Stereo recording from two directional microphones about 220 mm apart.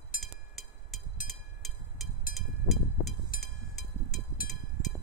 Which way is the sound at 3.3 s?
Centre (ahead or behind).